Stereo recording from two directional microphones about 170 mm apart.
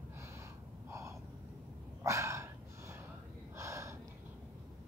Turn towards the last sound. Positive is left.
turn(degrees=-15)  # may be behind; listen again after turning